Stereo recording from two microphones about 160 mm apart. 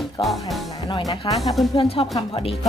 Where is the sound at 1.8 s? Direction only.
35° left (ahead or behind).